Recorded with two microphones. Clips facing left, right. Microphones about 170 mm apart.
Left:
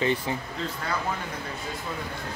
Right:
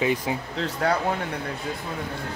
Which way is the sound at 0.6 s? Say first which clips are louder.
Right 8 dB; 75° right (ahead or behind).